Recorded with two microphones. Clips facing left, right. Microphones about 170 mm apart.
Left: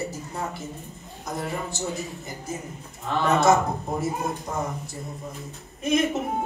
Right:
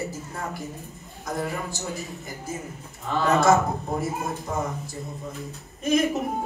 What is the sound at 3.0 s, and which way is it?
A man's voice, centre (ahead or behind).